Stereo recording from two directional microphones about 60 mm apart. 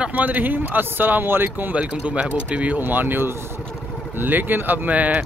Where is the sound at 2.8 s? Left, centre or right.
Right.